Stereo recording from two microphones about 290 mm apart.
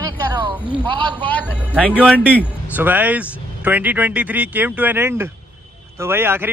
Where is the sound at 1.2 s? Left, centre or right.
Centre.